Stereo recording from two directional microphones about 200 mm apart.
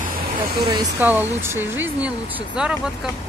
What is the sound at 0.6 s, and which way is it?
Speech, 25° right (ahead or behind).